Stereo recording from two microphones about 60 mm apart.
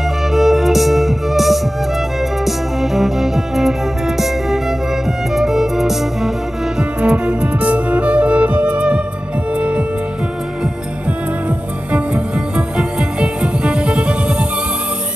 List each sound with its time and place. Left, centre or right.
0.3 s music: centre
6.8 s music: centre